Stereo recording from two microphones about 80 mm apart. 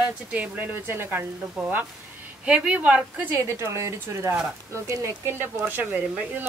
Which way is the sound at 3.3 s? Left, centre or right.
Right.